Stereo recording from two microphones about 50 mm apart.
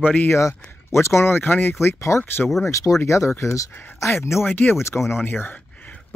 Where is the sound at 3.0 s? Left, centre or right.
Left.